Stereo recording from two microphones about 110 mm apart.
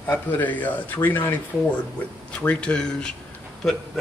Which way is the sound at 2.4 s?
10° left (ahead or behind).